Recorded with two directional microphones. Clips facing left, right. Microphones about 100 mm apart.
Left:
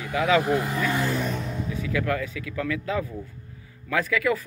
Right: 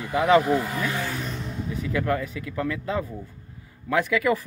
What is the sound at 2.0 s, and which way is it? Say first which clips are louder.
Speech: right 1 dB; 30° right (ahead or behind).